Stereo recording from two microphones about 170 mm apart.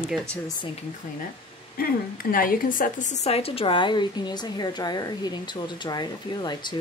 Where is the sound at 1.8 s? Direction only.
60° left (ahead or behind).